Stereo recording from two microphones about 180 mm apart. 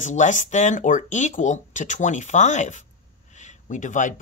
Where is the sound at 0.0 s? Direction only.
40° left (ahead or behind).